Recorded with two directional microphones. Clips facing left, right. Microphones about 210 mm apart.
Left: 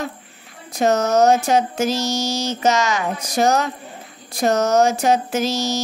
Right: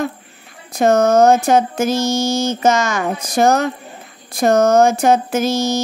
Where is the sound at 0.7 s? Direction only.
50° right (ahead or behind).